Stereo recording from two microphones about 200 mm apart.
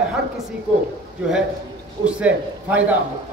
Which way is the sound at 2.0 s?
5° right (ahead or behind).